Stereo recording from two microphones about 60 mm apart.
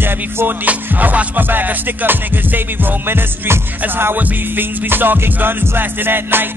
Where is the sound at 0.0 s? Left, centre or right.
Right.